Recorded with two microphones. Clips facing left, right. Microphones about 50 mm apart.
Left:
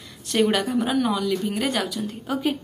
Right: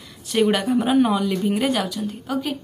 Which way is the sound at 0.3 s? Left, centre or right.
Centre.